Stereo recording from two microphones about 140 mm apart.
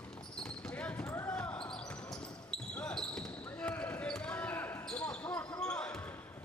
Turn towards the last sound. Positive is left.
turn(degrees=10)  # may be behind; listen again after turning